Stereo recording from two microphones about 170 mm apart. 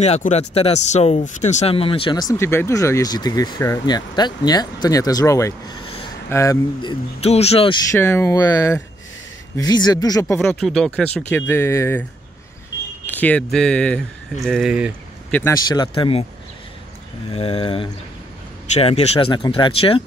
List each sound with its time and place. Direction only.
0.0 s speech: 40° left (ahead or behind)
7.9 s speech: 15° left (ahead or behind)
10.4 s speech: 5° left (ahead or behind)
15.3 s speech: 20° left (ahead or behind)
17.3 s speech: 25° left (ahead or behind)